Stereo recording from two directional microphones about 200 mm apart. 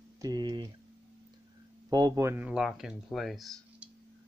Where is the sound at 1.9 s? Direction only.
15° right (ahead or behind).